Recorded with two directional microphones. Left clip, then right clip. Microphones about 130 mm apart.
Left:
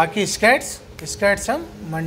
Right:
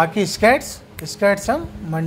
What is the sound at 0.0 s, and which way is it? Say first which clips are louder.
Speech: right 1 dB; 25° right (ahead or behind).